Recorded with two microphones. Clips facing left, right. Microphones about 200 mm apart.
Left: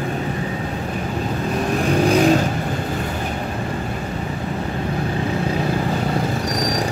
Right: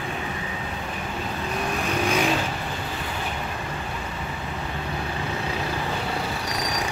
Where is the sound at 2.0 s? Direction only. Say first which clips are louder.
Left 9 dB; 35° left (ahead or behind).